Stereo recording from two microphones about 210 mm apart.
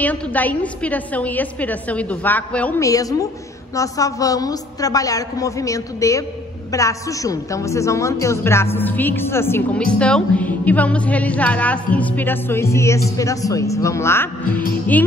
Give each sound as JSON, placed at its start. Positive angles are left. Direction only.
{"t": 0.0, "sound": "a woman's voice", "side_deg": 5}